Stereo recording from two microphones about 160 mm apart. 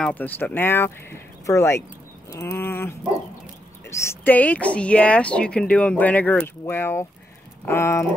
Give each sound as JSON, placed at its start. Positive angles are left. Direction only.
{"t": 0.0, "sound": "speech", "side_deg": 10}
{"t": 3.9, "sound": "speech", "side_deg": 15}